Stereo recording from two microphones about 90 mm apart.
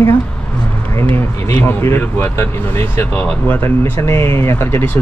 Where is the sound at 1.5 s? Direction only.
25° left (ahead or behind).